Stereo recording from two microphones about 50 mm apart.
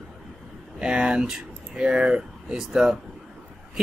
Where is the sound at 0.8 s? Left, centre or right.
Centre.